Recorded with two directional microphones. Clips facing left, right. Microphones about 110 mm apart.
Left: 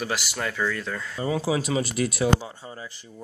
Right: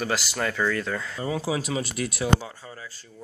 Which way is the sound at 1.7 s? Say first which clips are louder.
Left 3 dB; 30° left (ahead or behind).